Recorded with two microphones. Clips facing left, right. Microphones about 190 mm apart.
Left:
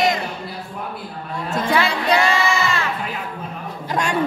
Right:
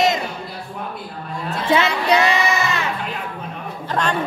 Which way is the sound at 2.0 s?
20° right (ahead or behind).